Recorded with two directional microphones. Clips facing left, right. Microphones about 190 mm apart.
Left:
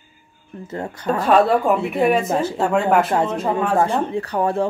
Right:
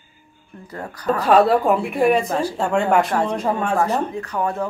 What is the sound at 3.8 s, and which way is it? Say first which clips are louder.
Speech: left 2 dB; 30° left (ahead or behind).